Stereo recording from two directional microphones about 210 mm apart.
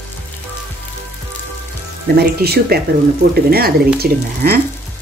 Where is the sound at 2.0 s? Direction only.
50° right (ahead or behind).